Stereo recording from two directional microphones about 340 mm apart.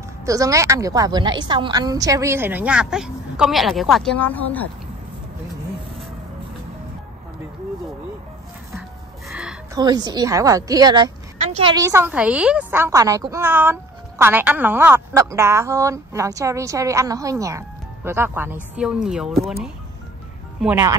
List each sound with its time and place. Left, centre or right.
0.2 s a woman's voice: centre
9.3 s music: centre
10.0 s a woman's voice: centre
20.6 s speech: centre